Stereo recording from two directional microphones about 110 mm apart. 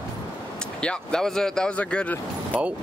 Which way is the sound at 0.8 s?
5° left (ahead or behind).